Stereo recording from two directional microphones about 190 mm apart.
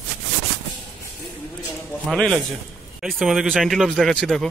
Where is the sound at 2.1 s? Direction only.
5° left (ahead or behind).